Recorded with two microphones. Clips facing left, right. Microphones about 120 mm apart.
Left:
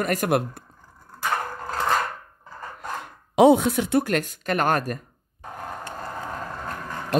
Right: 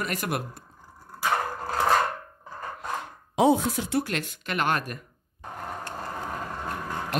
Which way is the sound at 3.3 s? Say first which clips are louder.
Left 6 dB; 70° left (ahead or behind).